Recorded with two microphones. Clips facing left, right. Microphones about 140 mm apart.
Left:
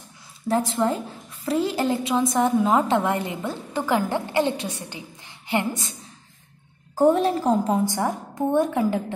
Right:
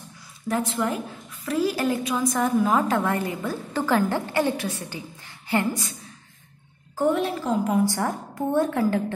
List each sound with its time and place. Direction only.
0.5 s a woman's voice: 30° left (ahead or behind)
7.0 s a woman's voice: 40° left (ahead or behind); by 9.0 s 15° left (ahead or behind)